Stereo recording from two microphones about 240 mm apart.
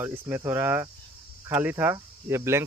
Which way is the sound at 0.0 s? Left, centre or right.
Centre.